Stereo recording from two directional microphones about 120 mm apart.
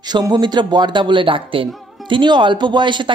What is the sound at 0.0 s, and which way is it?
Speech, 35° right (ahead or behind).